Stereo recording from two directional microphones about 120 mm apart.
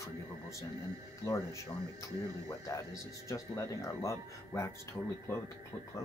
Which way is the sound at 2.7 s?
25° left (ahead or behind).